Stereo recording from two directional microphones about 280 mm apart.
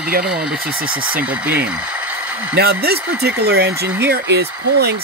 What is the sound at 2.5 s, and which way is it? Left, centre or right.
Speech, right.